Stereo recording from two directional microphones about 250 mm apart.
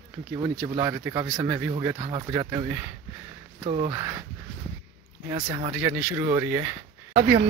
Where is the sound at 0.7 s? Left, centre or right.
Centre.